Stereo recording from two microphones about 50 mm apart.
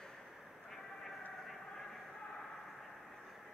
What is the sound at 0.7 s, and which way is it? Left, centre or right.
Vehicle, centre.